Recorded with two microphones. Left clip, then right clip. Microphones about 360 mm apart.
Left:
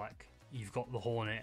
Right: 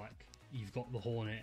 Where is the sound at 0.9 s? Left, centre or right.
Left.